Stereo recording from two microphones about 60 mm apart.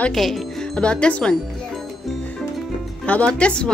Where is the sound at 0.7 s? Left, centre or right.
Centre.